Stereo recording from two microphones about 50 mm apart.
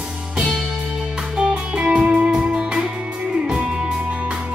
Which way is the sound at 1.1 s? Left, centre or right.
Right.